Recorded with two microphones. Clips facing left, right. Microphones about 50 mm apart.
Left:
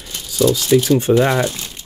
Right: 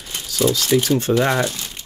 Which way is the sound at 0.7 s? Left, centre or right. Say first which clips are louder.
Left 5 dB; centre.